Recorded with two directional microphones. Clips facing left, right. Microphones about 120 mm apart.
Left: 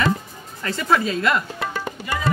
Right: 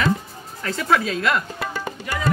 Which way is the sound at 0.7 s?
Centre (ahead or behind).